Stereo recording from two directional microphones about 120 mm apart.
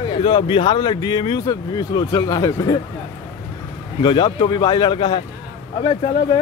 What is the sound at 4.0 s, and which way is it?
Speech, 40° left (ahead or behind).